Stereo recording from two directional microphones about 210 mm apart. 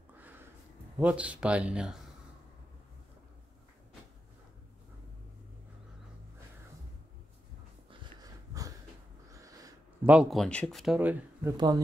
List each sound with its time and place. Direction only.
0.9 s speech: 5° right (ahead or behind)
7.9 s dog: 20° right (ahead or behind)
9.3 s a sound: 15° right (ahead or behind)
10.1 s speech: centre (ahead or behind)
11.5 s speech: 20° right (ahead or behind)